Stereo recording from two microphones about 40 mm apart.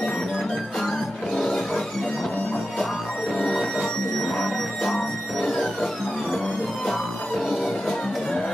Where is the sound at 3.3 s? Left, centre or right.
Centre.